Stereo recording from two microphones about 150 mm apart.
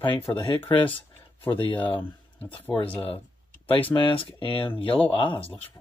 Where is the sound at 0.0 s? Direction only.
35° left (ahead or behind).